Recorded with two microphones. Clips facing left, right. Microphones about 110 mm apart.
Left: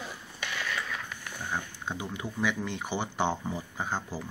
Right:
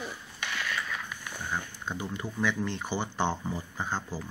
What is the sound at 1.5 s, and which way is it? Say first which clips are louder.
Speech: even; 15° left (ahead or behind).